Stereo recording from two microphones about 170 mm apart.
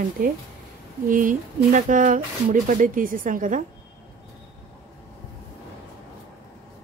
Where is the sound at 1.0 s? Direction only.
55° right (ahead or behind).